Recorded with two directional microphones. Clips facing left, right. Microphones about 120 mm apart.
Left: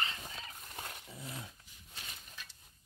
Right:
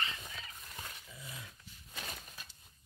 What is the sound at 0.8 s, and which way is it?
Dog, 45° left (ahead or behind).